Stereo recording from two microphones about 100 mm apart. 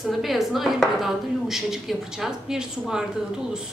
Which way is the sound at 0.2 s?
Centre (ahead or behind).